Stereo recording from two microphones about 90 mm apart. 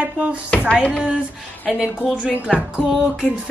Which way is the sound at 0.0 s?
15° right (ahead or behind).